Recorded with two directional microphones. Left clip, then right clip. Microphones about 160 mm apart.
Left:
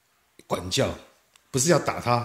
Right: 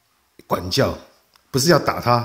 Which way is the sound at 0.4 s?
Centre (ahead or behind).